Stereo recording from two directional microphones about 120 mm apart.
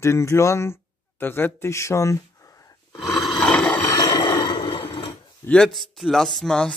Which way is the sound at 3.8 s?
30° left (ahead or behind).